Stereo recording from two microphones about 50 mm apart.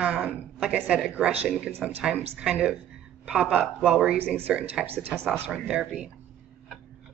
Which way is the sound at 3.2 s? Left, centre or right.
Centre.